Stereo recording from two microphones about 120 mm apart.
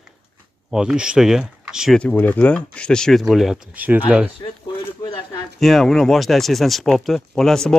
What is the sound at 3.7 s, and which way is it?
Speech, 15° right (ahead or behind).